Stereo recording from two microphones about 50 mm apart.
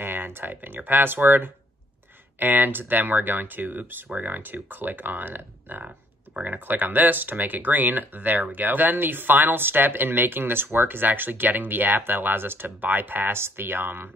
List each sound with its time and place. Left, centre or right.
0.0 s speech: right
5.9 s speech: right